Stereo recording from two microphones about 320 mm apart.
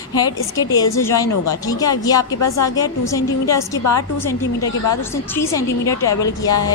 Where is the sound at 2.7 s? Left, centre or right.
Centre.